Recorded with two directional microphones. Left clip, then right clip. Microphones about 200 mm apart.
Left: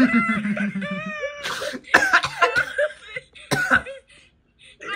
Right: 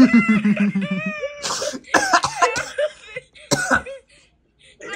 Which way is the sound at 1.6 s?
5° right (ahead or behind).